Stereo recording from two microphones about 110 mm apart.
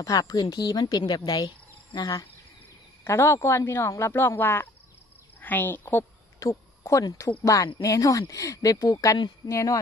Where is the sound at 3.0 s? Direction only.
25° left (ahead or behind).